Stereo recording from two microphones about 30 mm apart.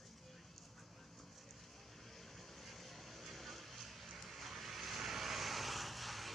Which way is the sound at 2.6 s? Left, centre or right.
Centre.